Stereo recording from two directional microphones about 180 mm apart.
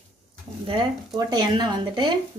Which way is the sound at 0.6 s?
25° right (ahead or behind).